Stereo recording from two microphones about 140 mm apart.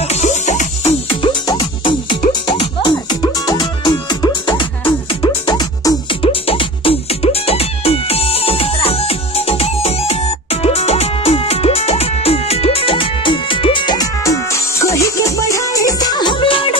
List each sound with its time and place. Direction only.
0.0 s music: 55° left (ahead or behind)
1.0 s music: 35° left (ahead or behind)